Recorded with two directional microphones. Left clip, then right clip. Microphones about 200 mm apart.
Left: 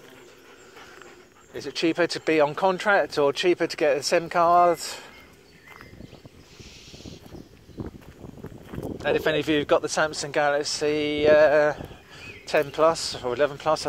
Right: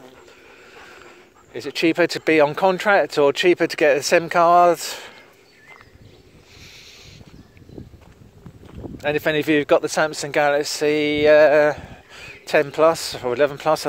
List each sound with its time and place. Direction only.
1.5 s speech: 55° right (ahead or behind)
6.6 s boat: 55° right (ahead or behind)
8.9 s speech: 55° right (ahead or behind)